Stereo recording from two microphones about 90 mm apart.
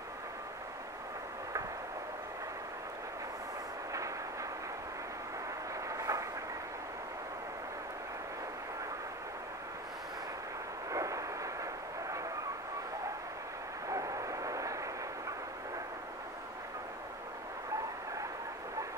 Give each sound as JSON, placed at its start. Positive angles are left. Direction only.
{"t": 3.9, "sound": "train", "side_deg": -35}
{"t": 5.9, "sound": "train", "side_deg": -40}
{"t": 10.9, "sound": "vehicle", "side_deg": -35}
{"t": 13.8, "sound": "vehicle", "side_deg": -40}